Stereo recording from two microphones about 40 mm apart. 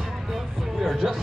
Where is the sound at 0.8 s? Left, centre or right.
Centre.